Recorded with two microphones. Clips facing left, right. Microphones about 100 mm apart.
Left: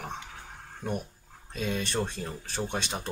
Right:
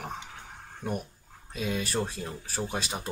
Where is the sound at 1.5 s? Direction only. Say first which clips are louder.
Even; 5° right (ahead or behind).